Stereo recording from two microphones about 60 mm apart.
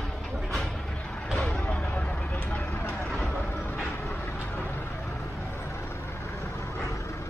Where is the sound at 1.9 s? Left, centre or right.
Left.